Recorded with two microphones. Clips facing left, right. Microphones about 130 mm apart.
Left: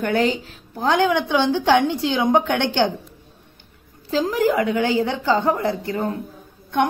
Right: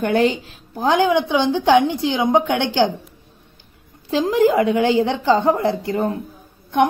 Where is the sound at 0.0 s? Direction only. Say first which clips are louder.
Right 3 dB; 15° right (ahead or behind).